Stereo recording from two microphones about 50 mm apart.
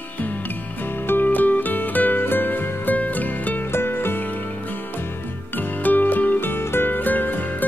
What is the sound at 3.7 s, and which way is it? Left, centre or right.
Music, left.